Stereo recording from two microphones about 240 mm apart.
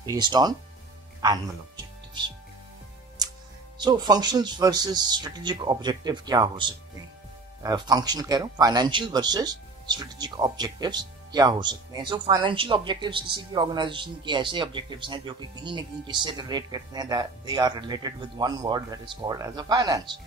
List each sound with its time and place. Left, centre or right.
0.0 s speech: centre
3.7 s speech: centre